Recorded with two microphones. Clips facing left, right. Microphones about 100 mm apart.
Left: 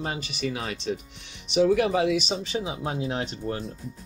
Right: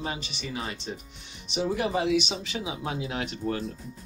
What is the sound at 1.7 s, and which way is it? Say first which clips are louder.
Speech: left 4 dB; 65° left (ahead or behind).